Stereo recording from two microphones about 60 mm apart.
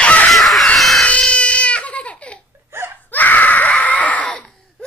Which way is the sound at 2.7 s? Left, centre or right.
Right.